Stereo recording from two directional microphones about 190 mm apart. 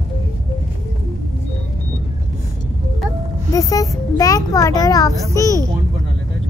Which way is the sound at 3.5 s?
20° left (ahead or behind).